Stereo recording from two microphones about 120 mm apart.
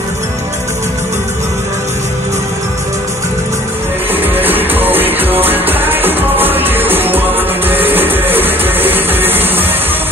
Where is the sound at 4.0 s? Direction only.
15° right (ahead or behind).